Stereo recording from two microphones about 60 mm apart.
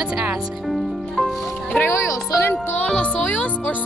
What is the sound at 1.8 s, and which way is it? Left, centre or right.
Music, left.